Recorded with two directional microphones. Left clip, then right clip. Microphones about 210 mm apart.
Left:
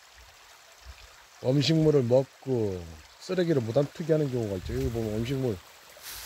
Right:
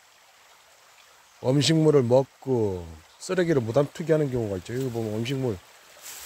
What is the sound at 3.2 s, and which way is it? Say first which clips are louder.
Speech: right 3 dB; 15° right (ahead or behind).